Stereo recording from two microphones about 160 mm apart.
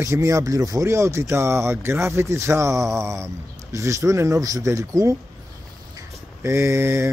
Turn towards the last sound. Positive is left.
turn(degrees=-15)  # may be behind; listen again after turning